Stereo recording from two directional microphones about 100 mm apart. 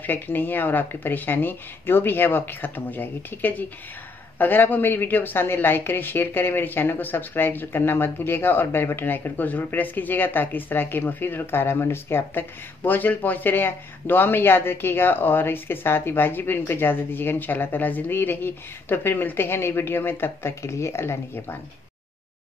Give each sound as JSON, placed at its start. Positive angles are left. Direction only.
{"t": 0.0, "sound": "a woman's voice", "side_deg": 20}